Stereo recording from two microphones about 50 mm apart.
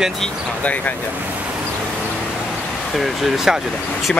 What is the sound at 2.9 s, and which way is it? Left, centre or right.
Speech, centre.